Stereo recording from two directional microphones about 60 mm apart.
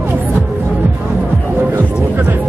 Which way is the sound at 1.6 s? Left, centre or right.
Right.